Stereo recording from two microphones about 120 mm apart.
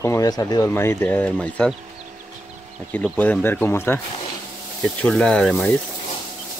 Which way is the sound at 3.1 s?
15° left (ahead or behind).